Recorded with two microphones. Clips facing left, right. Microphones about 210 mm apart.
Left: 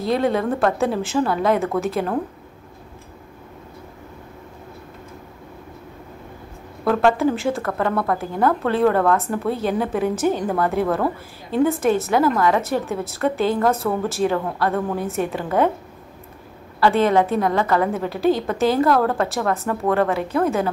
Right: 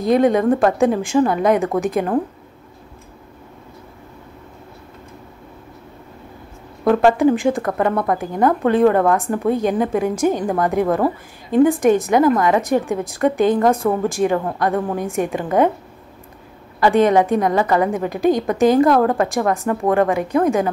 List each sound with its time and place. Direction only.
0.0 s speech: 15° right (ahead or behind)
6.8 s speech: 15° right (ahead or behind)
16.8 s speech: 15° right (ahead or behind)